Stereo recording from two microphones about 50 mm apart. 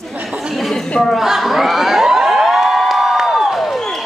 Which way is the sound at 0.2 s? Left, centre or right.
Centre.